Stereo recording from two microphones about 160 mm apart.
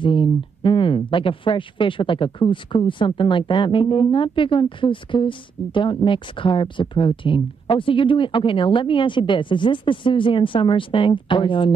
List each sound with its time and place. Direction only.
0.0 s speech: 30° left (ahead or behind)